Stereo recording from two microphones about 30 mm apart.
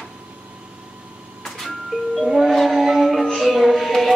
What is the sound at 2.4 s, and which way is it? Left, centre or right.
Music, centre.